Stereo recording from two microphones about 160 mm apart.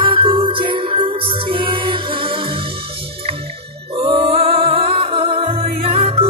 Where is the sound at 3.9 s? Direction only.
35° right (ahead or behind).